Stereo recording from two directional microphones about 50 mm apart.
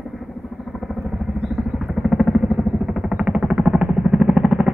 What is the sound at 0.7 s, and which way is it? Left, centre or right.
Vehicle, centre.